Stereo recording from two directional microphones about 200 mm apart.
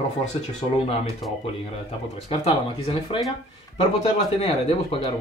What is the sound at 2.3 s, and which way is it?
Speech, 30° left (ahead or behind).